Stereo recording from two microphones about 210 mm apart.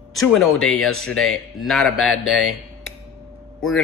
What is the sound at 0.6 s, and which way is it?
Speech, 75° left (ahead or behind).